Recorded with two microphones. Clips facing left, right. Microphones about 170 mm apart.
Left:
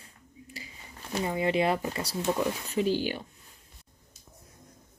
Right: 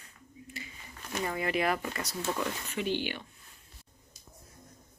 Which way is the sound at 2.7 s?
35° left (ahead or behind).